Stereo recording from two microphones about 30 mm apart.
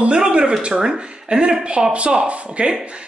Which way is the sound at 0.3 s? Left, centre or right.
Right.